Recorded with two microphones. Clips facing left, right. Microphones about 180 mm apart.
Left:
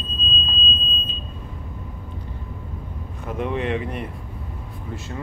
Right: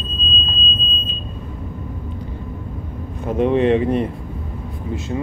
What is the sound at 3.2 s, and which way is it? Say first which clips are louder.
Speech: right 9 dB; 25° right (ahead or behind).